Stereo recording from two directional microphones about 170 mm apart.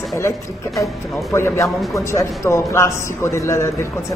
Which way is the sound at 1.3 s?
15° left (ahead or behind).